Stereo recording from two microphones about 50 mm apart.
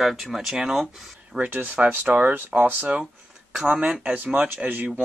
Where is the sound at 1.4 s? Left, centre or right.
Right.